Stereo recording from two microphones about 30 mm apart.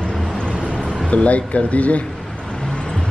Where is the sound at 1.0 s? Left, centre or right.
Left.